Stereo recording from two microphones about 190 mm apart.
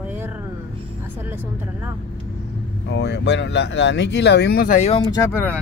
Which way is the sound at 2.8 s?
65° left (ahead or behind).